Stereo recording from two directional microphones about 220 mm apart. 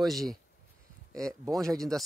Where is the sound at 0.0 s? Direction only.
Centre (ahead or behind).